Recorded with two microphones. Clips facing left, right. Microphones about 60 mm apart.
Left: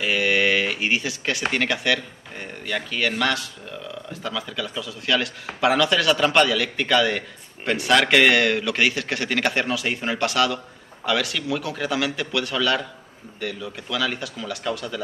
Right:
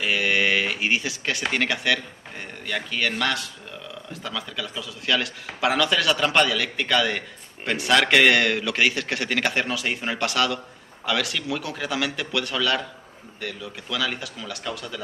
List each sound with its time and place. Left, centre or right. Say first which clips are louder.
0.0 s a man's voice: left 2 dB; centre